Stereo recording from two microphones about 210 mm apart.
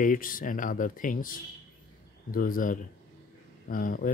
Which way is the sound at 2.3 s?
40° left (ahead or behind).